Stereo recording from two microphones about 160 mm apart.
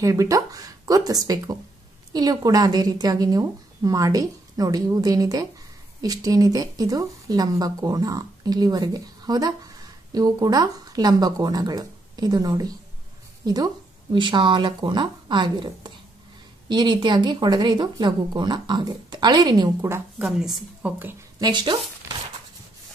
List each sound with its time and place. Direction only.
0.0 s speech: 20° right (ahead or behind)
20.2 s a woman's voice: 5° right (ahead or behind)
21.4 s speech: 30° right (ahead or behind)